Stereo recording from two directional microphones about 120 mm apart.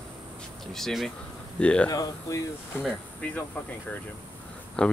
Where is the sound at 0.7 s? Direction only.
5° left (ahead or behind).